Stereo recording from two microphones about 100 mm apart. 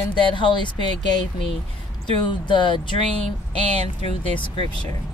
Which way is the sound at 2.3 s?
55° left (ahead or behind).